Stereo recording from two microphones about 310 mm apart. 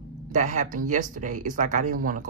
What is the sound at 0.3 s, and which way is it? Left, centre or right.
Speech, right.